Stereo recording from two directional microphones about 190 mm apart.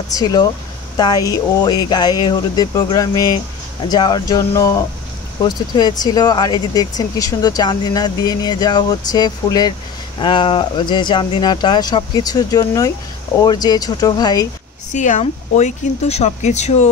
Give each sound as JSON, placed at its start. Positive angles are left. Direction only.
{"t": 0.1, "sound": "speech", "side_deg": 20}
{"t": 14.9, "sound": "speech", "side_deg": 40}